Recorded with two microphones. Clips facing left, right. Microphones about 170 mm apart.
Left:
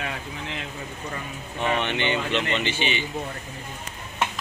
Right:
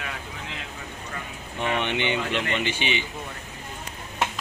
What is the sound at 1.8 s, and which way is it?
A man's voice, 15° right (ahead or behind).